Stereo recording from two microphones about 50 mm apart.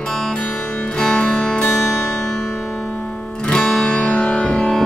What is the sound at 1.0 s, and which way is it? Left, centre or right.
Music, centre.